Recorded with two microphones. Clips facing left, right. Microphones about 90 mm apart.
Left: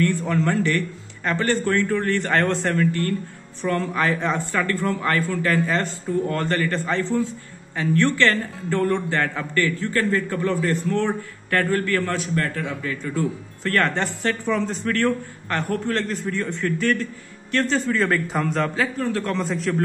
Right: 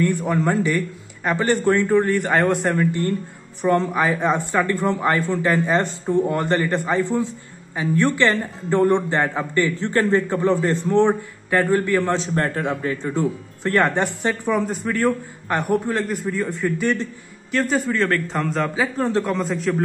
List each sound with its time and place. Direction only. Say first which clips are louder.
0.0 s speech: right 1 dB; 15° right (ahead or behind)
17.5 s speech: right 1 dB; 5° right (ahead or behind)
17.9 s a man's voice: right 1 dB; 5° left (ahead or behind)
18.9 s speech: right 4 dB; 30° right (ahead or behind)
19.2 s a man's voice: right 2 dB; centre (ahead or behind)